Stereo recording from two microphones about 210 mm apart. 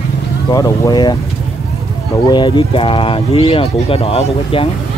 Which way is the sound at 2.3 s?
20° left (ahead or behind).